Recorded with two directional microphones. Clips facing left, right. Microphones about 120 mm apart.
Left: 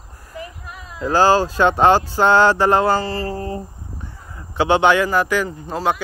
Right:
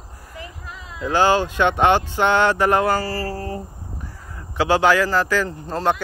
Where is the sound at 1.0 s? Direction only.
40° left (ahead or behind).